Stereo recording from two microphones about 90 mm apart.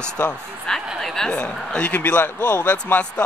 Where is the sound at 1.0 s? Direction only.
5° left (ahead or behind).